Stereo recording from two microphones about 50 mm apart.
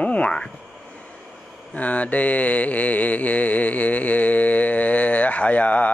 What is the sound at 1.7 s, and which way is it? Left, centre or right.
Speech, left.